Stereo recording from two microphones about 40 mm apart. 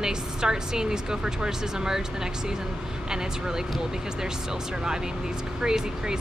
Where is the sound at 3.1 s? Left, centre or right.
Centre.